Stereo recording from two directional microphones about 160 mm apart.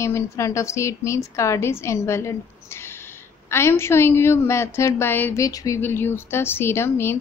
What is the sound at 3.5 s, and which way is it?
A woman's voice, 15° left (ahead or behind).